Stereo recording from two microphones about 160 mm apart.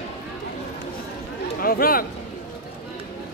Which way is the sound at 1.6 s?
65° left (ahead or behind).